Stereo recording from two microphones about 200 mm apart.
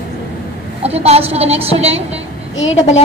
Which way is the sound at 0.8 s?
30° right (ahead or behind).